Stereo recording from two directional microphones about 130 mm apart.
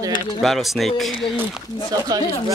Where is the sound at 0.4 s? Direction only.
Centre (ahead or behind).